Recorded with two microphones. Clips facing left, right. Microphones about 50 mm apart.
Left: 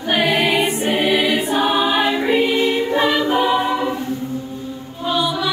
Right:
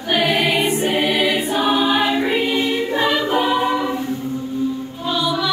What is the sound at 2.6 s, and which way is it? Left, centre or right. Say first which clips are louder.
Music: left 2 dB; left.